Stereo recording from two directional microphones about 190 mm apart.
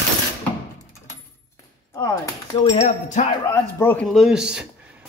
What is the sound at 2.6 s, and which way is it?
Speech, 35° left (ahead or behind).